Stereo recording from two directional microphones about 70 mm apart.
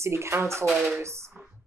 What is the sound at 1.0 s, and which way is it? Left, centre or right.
Speech, right.